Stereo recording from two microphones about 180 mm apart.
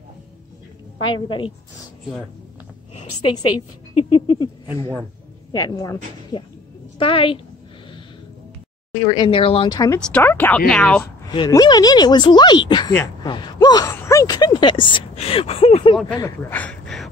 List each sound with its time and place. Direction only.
1.1 s speech: 25° left (ahead or behind)
4.7 s a man's voice: 30° right (ahead or behind)
5.5 s speech: 20° left (ahead or behind)
7.0 s speech: 30° left (ahead or behind)
8.9 s speech: 25° left (ahead or behind)
9.9 s speech: 5° left (ahead or behind)
11.2 s speech: 20° left (ahead or behind)
16.4 s a sound: 10° left (ahead or behind)